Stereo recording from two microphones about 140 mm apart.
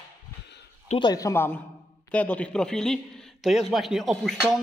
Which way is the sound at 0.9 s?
30° left (ahead or behind).